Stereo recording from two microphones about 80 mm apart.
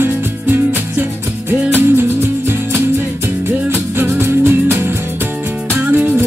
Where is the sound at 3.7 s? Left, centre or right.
Right.